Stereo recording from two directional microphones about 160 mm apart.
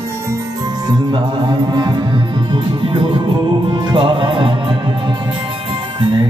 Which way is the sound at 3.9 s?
30° right (ahead or behind).